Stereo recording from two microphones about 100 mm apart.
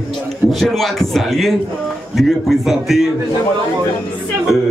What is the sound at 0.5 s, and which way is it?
Speech, centre (ahead or behind).